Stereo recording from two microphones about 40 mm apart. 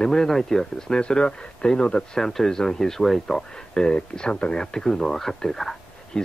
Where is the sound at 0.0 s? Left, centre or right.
Centre.